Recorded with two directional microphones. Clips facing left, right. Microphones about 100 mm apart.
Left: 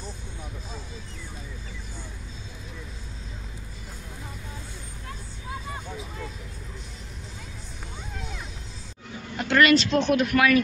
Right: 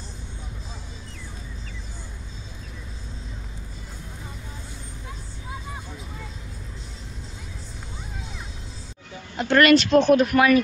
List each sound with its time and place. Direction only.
5.7 s vehicle: 5° right (ahead or behind)
9.5 s speech: 55° right (ahead or behind); by 10.6 s 30° right (ahead or behind)